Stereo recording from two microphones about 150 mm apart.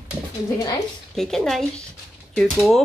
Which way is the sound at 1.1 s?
Centre (ahead or behind).